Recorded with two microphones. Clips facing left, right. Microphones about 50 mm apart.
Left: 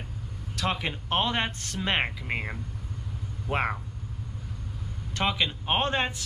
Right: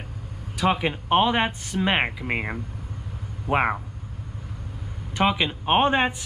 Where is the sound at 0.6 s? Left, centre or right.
Centre.